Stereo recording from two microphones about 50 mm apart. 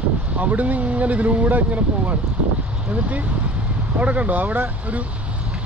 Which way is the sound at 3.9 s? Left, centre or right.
Right.